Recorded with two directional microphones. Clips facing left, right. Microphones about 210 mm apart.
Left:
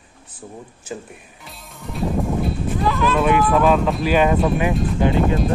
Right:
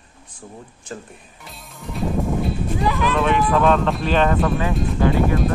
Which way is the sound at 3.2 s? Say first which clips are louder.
Left 2 dB; 5° left (ahead or behind).